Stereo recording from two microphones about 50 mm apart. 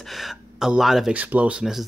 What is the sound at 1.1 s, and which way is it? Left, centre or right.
Speech, right.